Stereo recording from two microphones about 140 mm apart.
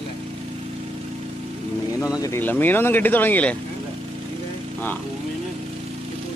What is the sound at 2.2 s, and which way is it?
Speech, 15° left (ahead or behind).